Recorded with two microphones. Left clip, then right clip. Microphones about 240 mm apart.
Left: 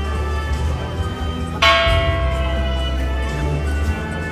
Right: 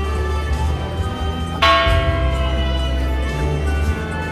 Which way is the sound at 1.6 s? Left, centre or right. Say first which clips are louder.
Even; left.